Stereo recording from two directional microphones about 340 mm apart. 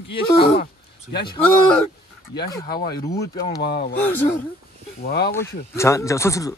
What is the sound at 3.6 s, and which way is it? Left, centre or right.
Speech, left.